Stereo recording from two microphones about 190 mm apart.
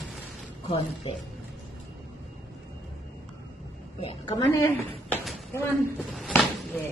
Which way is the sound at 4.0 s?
25° left (ahead or behind).